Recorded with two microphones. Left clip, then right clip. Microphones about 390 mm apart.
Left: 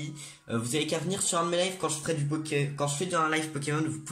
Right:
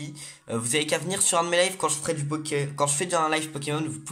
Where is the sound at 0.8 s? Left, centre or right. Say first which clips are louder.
Right 4 dB; centre.